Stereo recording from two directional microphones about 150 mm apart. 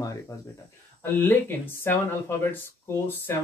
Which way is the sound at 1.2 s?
15° left (ahead or behind).